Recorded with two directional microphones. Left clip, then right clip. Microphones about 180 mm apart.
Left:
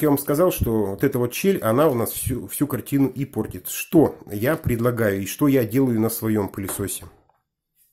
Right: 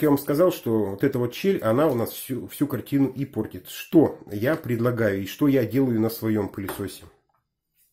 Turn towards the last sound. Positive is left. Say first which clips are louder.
# left 2 dB
turn(degrees=20)  # may be behind; listen again after turning